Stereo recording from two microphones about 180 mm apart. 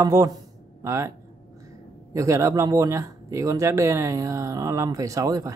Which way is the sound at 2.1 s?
15° right (ahead or behind).